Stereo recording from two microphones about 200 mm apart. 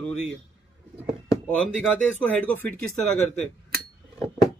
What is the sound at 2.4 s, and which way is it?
Speech, 10° left (ahead or behind).